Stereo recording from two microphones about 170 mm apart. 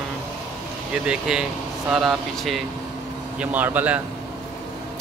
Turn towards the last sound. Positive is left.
turn(degrees=-10)  # may be behind; listen again after turning